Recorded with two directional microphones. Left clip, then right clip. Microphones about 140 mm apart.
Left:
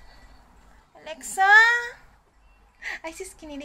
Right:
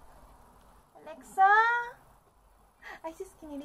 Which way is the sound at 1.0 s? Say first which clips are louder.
Left 4 dB; 20° left (ahead or behind).